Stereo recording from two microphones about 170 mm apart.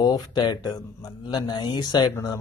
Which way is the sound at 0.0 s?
25° left (ahead or behind).